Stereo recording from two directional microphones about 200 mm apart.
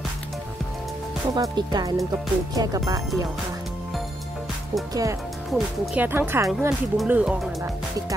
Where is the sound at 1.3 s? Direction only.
20° right (ahead or behind).